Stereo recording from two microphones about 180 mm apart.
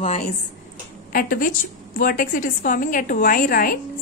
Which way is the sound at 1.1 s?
50° left (ahead or behind).